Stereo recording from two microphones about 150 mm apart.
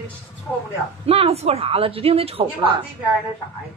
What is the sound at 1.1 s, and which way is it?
Speech, 40° right (ahead or behind).